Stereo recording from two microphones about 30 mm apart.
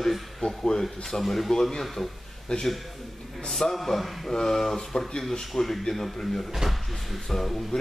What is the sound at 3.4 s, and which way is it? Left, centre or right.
Speech, centre.